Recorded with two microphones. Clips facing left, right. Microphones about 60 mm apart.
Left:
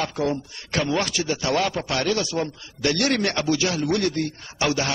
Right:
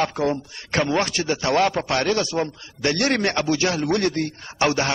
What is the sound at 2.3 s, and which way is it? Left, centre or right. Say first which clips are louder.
A man's voice: right 2 dB; right.